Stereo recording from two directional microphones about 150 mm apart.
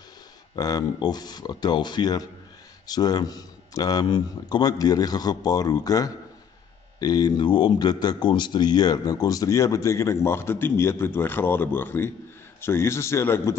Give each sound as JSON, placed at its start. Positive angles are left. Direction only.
{"t": 0.6, "sound": "a man's voice", "side_deg": 25}